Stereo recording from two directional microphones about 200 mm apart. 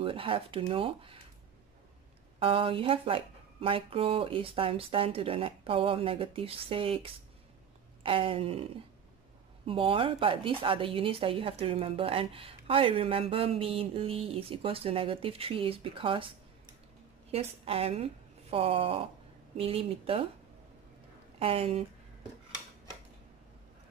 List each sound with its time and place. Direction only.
0.0 s speech: 25° right (ahead or behind)
2.3 s speech: 25° right (ahead or behind)
9.7 s speech: 25° right (ahead or behind)
21.4 s speech: 30° right (ahead or behind)